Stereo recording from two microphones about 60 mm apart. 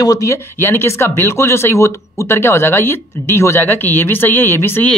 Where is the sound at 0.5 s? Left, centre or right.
Left.